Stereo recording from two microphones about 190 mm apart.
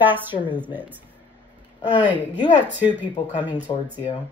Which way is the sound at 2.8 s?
10° right (ahead or behind).